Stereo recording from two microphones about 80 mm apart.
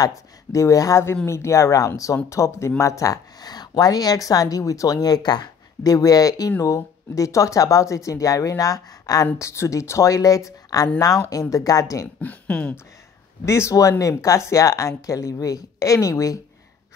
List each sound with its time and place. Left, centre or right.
0.0 s speech: left
12.2 s speech: centre
13.5 s speech: left